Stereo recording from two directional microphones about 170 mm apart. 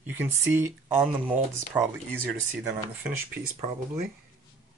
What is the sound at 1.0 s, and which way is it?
Speech, 10° right (ahead or behind).